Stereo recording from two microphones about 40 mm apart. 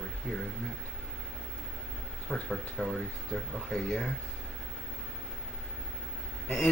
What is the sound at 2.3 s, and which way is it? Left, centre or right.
Speech, centre.